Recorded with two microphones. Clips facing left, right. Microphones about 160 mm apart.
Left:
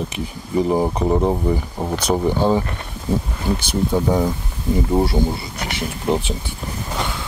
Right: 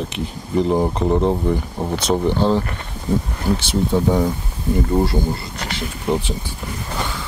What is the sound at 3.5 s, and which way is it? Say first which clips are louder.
Speech: right 1 dB; centre (ahead or behind).